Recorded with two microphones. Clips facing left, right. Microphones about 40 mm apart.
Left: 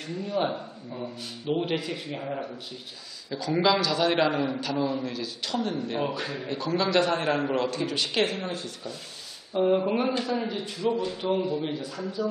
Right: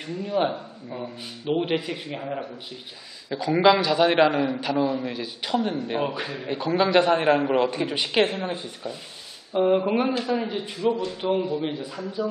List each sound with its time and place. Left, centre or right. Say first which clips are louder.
0.1 s a man's voice: right 3 dB; centre
6.4 s a man's voice: right 5 dB; right